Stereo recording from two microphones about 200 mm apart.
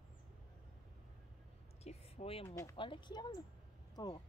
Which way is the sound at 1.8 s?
30° left (ahead or behind).